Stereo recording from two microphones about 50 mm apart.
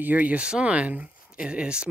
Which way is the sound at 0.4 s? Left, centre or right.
Right.